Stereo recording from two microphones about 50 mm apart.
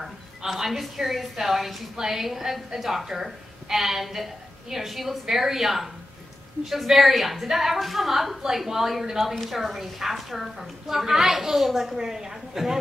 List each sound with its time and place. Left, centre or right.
0.0 s a woman's voice: centre